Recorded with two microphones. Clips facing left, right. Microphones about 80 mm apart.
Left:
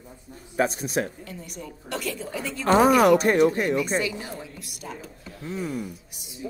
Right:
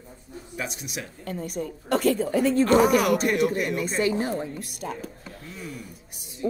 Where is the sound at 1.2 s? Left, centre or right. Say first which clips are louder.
Right 7 dB; right.